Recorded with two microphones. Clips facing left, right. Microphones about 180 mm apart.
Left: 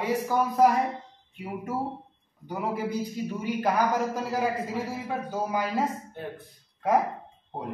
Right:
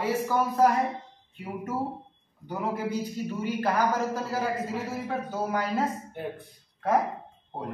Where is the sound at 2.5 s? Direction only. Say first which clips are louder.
Even; 10° left (ahead or behind).